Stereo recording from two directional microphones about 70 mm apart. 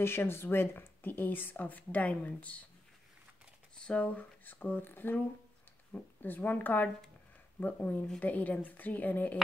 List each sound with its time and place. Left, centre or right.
0.0 s speech: left
3.7 s speech: centre